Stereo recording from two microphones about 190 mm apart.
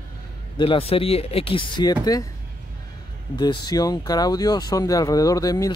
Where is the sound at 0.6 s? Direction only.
30° left (ahead or behind).